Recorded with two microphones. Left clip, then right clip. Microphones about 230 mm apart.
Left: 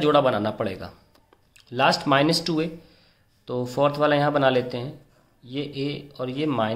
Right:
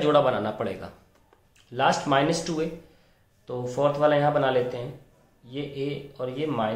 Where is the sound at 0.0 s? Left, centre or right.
Left.